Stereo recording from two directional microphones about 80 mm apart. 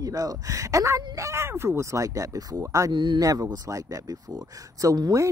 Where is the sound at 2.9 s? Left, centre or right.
Right.